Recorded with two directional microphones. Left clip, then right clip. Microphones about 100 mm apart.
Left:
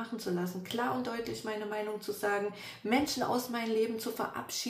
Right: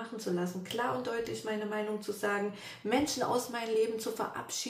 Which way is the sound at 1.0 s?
30° left (ahead or behind).